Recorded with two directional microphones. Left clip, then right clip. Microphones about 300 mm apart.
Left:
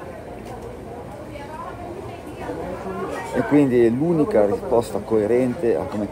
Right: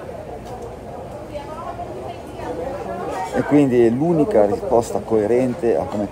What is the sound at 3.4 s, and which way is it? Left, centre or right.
A man's voice, centre.